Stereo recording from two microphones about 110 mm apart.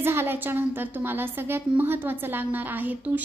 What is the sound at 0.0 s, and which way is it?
A woman's voice, 20° right (ahead or behind).